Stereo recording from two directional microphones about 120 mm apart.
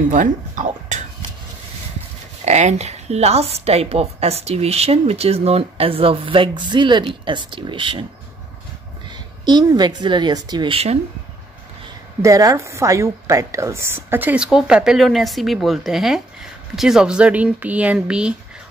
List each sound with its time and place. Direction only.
0.1 s speech: 90° right
2.4 s a woman's voice: 70° right (ahead or behind); by 8.0 s 45° right (ahead or behind)
9.1 s speech: 35° right (ahead or behind)
10.7 s a woman's voice: 55° right (ahead or behind)
12.2 s a woman's voice: 30° right (ahead or behind); by 18.3 s 5° right (ahead or behind)